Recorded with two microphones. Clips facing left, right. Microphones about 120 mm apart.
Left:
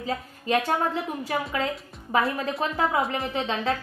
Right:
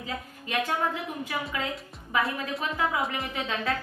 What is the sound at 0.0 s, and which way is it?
A woman's voice, 35° left (ahead or behind).